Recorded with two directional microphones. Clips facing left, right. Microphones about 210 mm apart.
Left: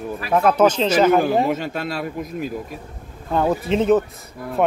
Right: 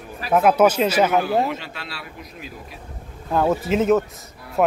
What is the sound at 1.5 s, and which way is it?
Speech, 45° left (ahead or behind).